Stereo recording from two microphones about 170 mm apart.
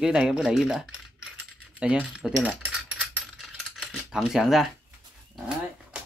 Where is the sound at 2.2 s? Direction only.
5° right (ahead or behind).